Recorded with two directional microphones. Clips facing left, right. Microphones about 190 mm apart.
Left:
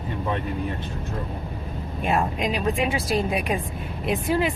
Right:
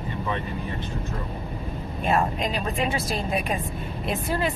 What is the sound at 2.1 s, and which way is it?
Speech, 10° left (ahead or behind).